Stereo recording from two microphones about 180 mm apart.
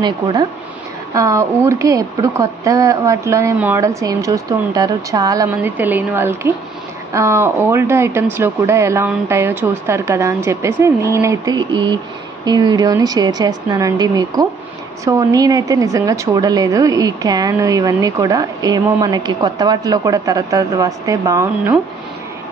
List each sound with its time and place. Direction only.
0.0 s a woman's voice: 20° right (ahead or behind)